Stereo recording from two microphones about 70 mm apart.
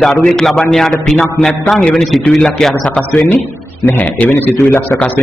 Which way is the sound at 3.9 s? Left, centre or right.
Left.